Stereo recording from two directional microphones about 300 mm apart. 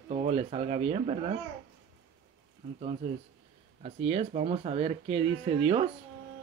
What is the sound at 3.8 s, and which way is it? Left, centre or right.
Speech, centre.